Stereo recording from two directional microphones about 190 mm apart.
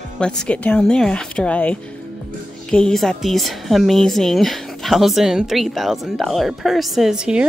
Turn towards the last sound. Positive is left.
turn(degrees=-5)  # may be behind; listen again after turning